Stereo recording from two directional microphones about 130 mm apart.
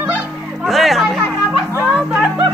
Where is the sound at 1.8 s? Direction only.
5° right (ahead or behind).